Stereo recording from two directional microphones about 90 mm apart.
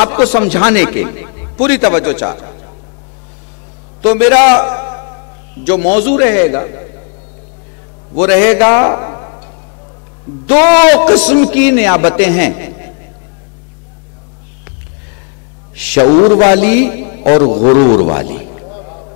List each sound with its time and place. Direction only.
0.0 s a man's voice: 15° left (ahead or behind)
4.0 s a man's voice: 10° left (ahead or behind)
8.2 s a man's voice: 15° left (ahead or behind)
10.4 s a man's voice: 15° left (ahead or behind)
15.8 s a man's voice: 10° left (ahead or behind)